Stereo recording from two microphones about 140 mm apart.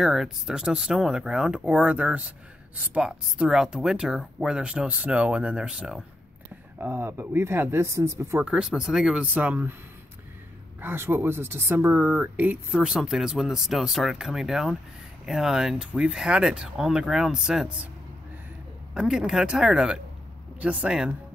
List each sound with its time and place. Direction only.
0.0 s speech: 5° right (ahead or behind)
6.8 s speech: 15° right (ahead or behind)
8.5 s speech: 5° right (ahead or behind)
10.8 s speech: 15° right (ahead or behind)
18.9 s speech: 5° right (ahead or behind)